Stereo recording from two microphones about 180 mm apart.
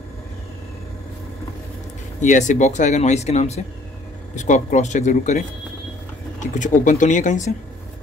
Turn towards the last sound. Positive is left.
turn(degrees=45)  # may be behind; listen again after turning